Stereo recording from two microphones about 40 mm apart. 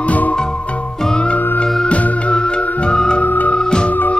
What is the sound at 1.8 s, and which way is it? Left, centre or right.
Music, left.